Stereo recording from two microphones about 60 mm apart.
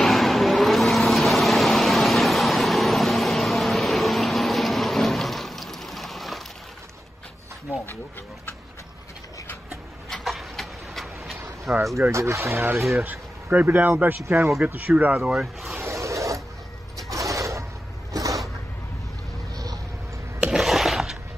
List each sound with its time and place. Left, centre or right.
0.0 s vehicle: centre
10.0 s vehicle: centre
12.1 s speech: right
13.0 s speech: right
14.2 s speech: right
14.6 s speech: right
15.7 s a sound: right
16.9 s bird: right
18.1 s a sound: right
19.5 s vehicle: right
20.5 s a sound: centre